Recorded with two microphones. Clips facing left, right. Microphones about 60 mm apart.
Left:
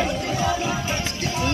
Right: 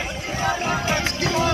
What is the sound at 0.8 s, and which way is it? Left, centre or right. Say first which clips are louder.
Music: right 4 dB; right.